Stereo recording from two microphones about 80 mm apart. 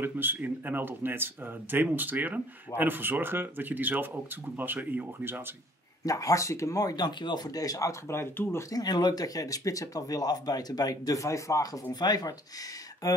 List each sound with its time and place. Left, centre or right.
0.0 s speech: right
6.0 s speech: left
8.6 s speech: left
11.9 s speech: left